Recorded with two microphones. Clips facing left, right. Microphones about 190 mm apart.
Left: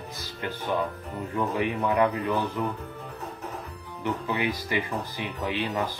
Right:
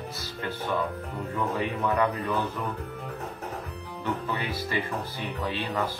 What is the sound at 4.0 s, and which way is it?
Speech, 15° left (ahead or behind).